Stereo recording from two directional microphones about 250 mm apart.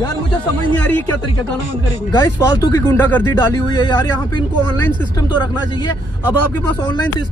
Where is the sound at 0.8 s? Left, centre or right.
Centre.